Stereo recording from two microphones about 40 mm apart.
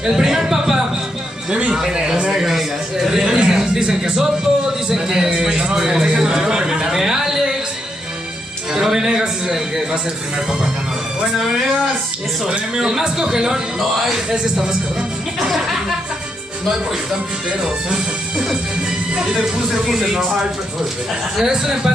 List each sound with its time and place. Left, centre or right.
0.0 s a sound: centre
1.5 s a man's voice: right
5.8 s a man's voice: centre
6.4 s a man's voice: right
8.7 s a man's voice: centre
12.4 s a man's voice: centre
15.4 s music: centre
17.6 s speech: right
19.3 s a man's voice: centre